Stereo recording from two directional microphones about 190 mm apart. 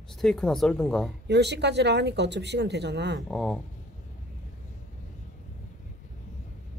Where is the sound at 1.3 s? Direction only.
60° right (ahead or behind).